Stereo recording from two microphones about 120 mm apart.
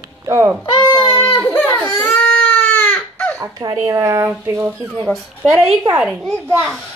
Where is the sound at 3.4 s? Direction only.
30° right (ahead or behind).